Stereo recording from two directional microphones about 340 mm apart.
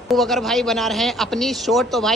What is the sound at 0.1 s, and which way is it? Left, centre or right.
Speech, centre.